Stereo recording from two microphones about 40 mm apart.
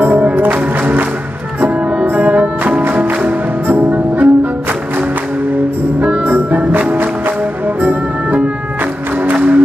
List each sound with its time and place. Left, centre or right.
0.0 s music: right
2.1 s music: right
2.8 s music: right
5.9 s music: right